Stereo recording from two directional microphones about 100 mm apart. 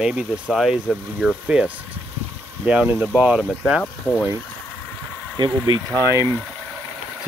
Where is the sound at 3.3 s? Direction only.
5° right (ahead or behind).